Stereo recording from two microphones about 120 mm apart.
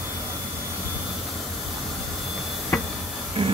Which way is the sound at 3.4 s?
55° right (ahead or behind).